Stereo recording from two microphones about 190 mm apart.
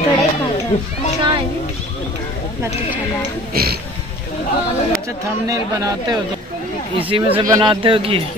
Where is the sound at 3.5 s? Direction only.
55° right (ahead or behind).